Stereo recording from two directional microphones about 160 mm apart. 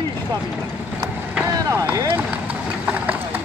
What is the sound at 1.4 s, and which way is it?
Vehicle, 20° right (ahead or behind).